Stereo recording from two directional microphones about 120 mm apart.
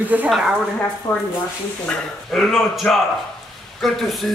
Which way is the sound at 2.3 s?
Centre (ahead or behind).